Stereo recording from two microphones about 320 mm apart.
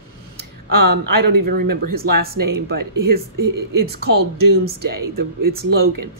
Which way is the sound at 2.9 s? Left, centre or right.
Right.